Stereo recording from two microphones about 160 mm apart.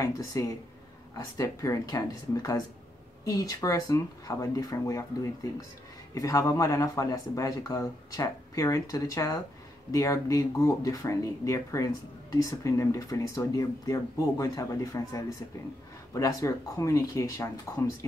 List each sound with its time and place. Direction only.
0.0 s speech: 20° left (ahead or behind)